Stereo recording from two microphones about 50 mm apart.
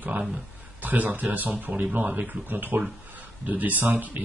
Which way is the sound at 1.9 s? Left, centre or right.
Right.